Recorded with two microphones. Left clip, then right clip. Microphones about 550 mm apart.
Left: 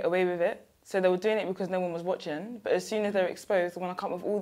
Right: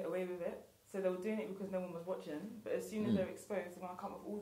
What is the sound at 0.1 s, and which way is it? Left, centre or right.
Speech, left.